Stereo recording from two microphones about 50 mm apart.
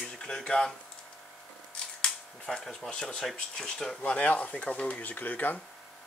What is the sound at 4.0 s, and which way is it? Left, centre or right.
Speech, left.